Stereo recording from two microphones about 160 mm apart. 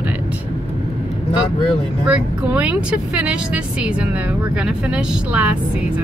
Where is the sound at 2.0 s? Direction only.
5° right (ahead or behind).